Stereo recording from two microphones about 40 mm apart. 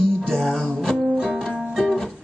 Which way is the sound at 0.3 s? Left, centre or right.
Centre.